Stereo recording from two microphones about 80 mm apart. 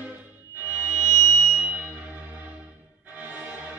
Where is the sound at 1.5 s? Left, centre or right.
Centre.